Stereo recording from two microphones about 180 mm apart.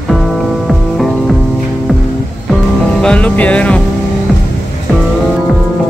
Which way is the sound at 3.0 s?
5° left (ahead or behind).